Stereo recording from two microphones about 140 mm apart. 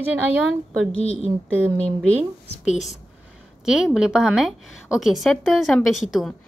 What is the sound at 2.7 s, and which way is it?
A woman's voice, centre (ahead or behind).